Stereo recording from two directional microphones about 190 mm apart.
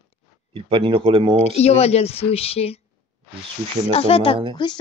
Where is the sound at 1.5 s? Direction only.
35° left (ahead or behind).